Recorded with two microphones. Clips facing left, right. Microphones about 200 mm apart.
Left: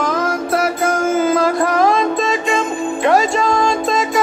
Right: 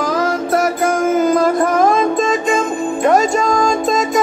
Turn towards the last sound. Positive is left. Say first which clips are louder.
# right 1 dB
turn(degrees=0)  # may be behind; listen again after turning